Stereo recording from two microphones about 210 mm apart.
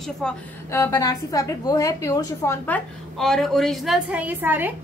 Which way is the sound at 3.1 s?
Centre (ahead or behind).